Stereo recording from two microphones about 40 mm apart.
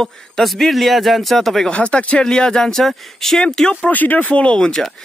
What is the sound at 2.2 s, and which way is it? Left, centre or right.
Speech, centre.